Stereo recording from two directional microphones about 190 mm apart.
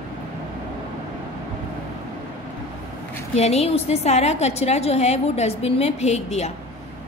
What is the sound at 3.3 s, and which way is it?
A woman's voice, 35° left (ahead or behind).